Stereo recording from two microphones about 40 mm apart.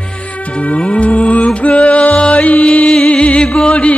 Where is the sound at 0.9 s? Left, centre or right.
Left.